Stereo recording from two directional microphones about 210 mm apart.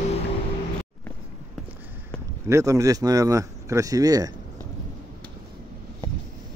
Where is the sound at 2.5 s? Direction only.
15° right (ahead or behind).